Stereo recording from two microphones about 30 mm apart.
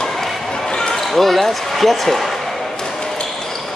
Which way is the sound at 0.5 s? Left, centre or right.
Left.